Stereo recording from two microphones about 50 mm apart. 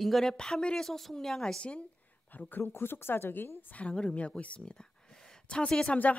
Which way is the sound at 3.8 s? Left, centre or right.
Left.